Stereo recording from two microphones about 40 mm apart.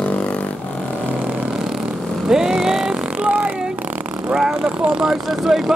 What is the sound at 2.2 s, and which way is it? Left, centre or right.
Speech, centre.